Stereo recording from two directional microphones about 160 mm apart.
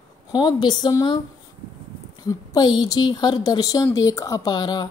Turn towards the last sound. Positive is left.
turn(degrees=25)  # may be behind; listen again after turning